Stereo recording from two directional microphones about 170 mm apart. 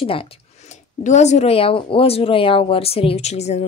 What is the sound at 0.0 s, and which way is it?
Speech, 35° left (ahead or behind).